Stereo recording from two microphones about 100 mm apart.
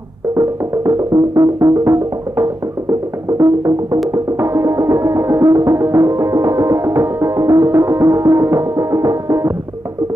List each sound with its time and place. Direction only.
0.3 s music: 35° right (ahead or behind)